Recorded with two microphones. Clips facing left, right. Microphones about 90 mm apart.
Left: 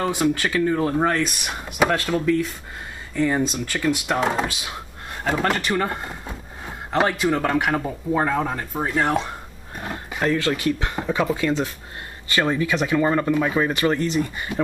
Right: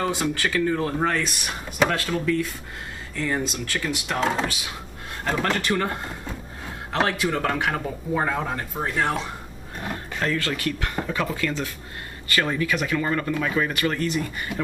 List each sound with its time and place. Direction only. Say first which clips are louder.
0.0 s speech: left 3 dB; 10° left (ahead or behind)
10.2 s speech: left 5 dB; 20° left (ahead or behind)